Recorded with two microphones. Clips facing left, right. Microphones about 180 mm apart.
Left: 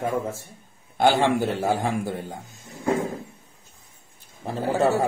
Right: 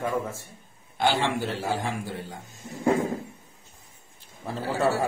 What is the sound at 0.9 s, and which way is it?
Speech, 50° left (ahead or behind).